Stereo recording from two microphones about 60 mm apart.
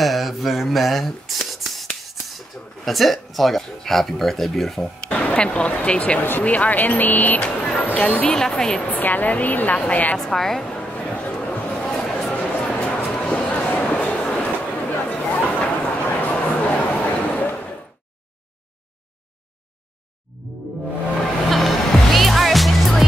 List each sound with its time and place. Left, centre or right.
0.0 s a sound: centre
2.2 s speech: centre
5.0 s speech: centre
7.3 s speech: centre
8.4 s a woman's voice: centre
8.9 s speech: left
10.1 s a sound: centre; by 11.9 s left
11.9 s a sound: centre; by 17.6 s left
21.5 s music: centre